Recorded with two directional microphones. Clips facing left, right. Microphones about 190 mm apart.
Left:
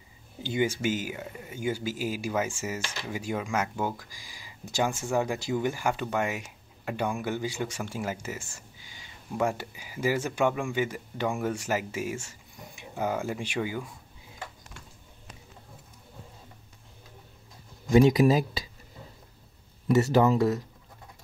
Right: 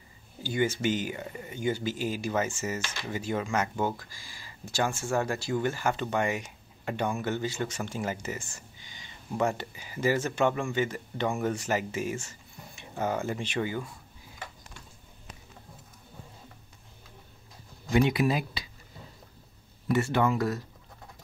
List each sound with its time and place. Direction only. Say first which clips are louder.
0.4 s speech: even; 15° left (ahead or behind)
17.9 s speech: left 5 dB; 40° left (ahead or behind)
19.9 s speech: left 4 dB; 40° left (ahead or behind)